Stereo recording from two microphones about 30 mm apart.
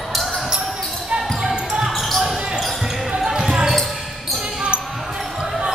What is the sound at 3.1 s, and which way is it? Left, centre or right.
Basketball bounce, centre.